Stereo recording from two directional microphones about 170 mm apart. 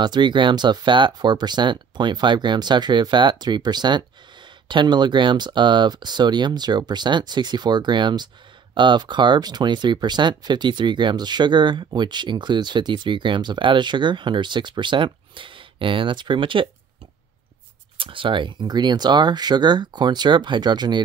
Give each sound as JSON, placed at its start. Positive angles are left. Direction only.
{"t": 0.0, "sound": "speech", "side_deg": -25}
{"t": 17.9, "sound": "speech", "side_deg": -30}